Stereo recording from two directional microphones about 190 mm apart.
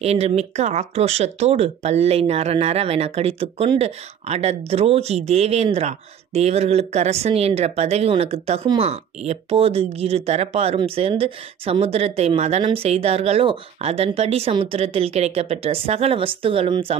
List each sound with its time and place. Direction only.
0.0 s speech: 35° right (ahead or behind)